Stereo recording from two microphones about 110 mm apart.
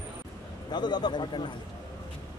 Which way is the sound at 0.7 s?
40° left (ahead or behind).